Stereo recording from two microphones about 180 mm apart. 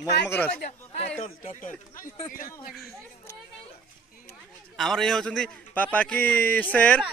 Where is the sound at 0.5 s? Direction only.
45° left (ahead or behind).